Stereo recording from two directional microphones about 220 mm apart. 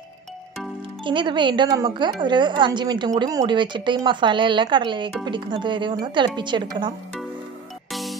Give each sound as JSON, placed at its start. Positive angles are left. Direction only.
{"t": 1.0, "sound": "a woman's voice", "side_deg": -20}
{"t": 7.9, "sound": "music", "side_deg": 0}